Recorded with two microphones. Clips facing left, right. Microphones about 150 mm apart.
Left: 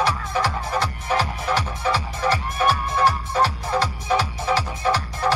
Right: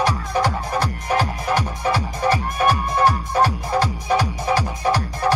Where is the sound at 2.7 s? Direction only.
45° right (ahead or behind).